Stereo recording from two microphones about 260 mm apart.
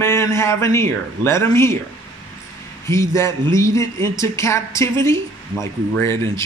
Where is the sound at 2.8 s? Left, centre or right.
Centre.